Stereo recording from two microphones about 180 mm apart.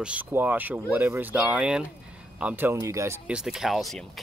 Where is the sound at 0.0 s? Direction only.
10° right (ahead or behind).